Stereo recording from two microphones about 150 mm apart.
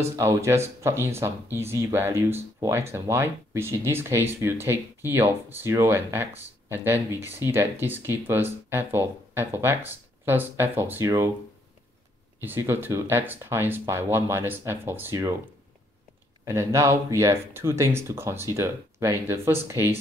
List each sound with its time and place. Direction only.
0.0 s speech: 20° right (ahead or behind)
12.4 s speech: 15° right (ahead or behind)
16.4 s speech: 20° right (ahead or behind)